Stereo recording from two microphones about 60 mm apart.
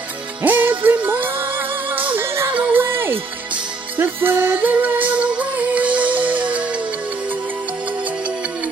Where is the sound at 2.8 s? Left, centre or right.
Right.